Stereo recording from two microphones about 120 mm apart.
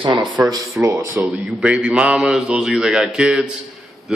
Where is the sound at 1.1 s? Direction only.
5° right (ahead or behind).